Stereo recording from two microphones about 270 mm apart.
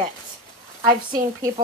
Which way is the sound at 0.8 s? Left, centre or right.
Right.